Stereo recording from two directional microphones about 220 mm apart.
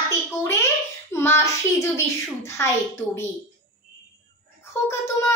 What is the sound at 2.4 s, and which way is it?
Speech, 10° left (ahead or behind).